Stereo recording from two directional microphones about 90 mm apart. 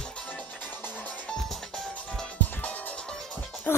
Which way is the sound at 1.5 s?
5° left (ahead or behind).